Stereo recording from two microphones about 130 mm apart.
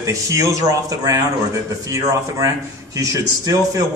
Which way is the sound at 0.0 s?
25° right (ahead or behind).